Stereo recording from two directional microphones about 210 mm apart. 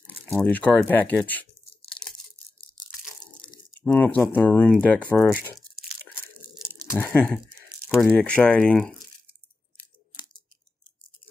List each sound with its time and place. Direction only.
0.3 s speech: 10° left (ahead or behind)
3.8 s speech: 10° left (ahead or behind)
7.0 s speech: 5° left (ahead or behind)